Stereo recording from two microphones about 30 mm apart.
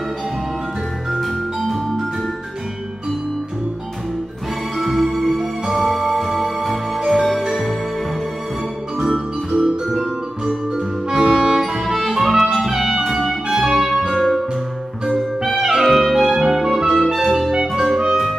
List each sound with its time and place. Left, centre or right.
1.1 s music: centre
4.7 s music: centre
11.2 s music: centre
14.1 s music: centre
15.5 s clarinet: centre
15.8 s music: centre